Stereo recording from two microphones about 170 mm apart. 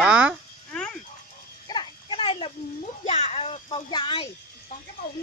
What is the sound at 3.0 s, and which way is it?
Speech, 40° left (ahead or behind).